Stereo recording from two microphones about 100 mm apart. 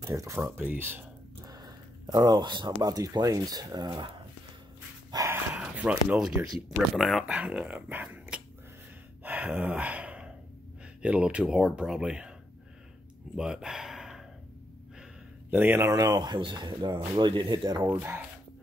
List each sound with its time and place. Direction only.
0.0 s speech: 30° right (ahead or behind)
1.4 s speech: 40° right (ahead or behind)
5.1 s dog: 30° right (ahead or behind)
5.5 s speech: 10° right (ahead or behind)
7.2 s speech: 10° right (ahead or behind)
9.2 s gasp: 15° right (ahead or behind)
11.0 s speech: 10° right (ahead or behind)
13.4 s a sound: 5° right (ahead or behind)
15.5 s speech: 20° right (ahead or behind)
15.8 s speech: 35° right (ahead or behind)